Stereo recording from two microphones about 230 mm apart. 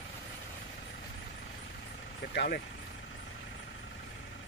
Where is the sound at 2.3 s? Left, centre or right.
Left.